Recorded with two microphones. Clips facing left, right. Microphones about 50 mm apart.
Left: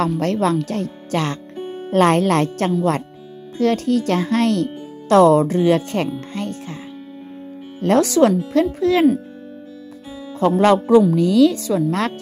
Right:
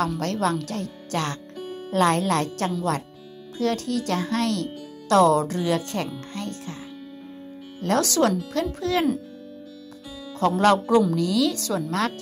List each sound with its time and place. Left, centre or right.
0.1 s speech: left
6.3 s music: left
7.8 s speech: left
10.5 s speech: left
11.1 s speech: left
11.5 s speech: centre